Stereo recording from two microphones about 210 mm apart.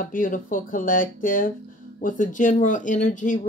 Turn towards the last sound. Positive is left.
turn(degrees=35)  # may be behind; listen again after turning